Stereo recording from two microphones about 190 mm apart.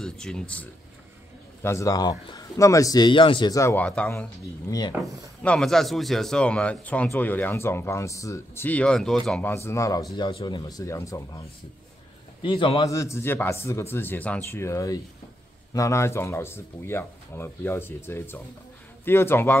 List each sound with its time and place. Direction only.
0.0 s speech: 5° left (ahead or behind)
1.6 s speech: 15° left (ahead or behind)
4.6 s speech: 20° left (ahead or behind)
5.0 s speech: 5° left (ahead or behind)
12.4 s speech: 25° left (ahead or behind); by 19.6 s 10° left (ahead or behind)